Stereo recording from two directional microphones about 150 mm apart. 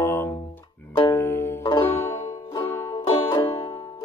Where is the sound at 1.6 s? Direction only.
35° left (ahead or behind).